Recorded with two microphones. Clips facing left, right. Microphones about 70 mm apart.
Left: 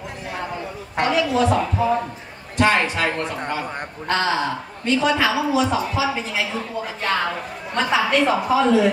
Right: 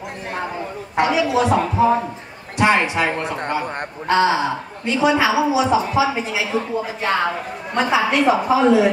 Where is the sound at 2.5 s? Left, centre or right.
Centre.